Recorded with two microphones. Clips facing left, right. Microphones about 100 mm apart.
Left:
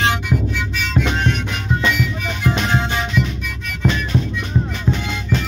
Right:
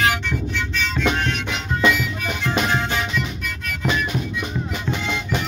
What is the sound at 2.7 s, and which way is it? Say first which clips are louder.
Music: left 2 dB; 20° left (ahead or behind).